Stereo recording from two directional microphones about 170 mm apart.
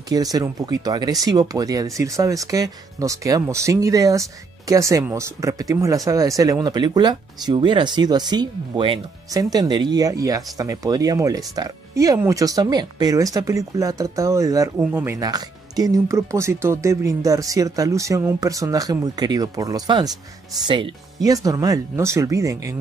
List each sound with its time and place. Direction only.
0.1 s speech: 20° right (ahead or behind)